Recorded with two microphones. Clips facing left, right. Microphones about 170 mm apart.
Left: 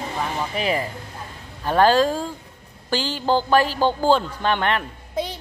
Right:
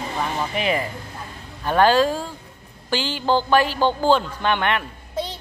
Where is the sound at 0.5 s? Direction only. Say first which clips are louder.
Even; 35° left (ahead or behind).